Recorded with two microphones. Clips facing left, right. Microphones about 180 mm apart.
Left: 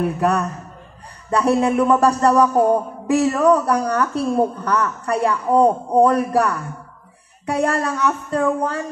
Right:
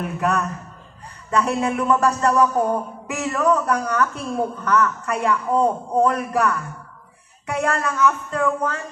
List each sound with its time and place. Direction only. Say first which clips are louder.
0.2 s a woman's voice: left 3 dB; 35° left (ahead or behind)